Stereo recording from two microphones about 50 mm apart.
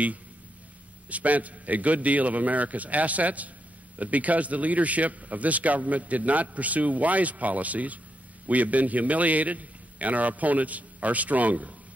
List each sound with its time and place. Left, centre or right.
1.1 s a man's voice: right